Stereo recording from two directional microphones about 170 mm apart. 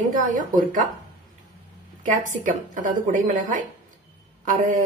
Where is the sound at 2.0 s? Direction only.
50° right (ahead or behind).